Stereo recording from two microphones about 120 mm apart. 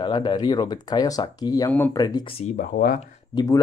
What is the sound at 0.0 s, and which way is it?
Speech, 40° left (ahead or behind).